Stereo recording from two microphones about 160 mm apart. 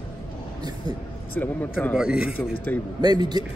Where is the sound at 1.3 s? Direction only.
10° left (ahead or behind).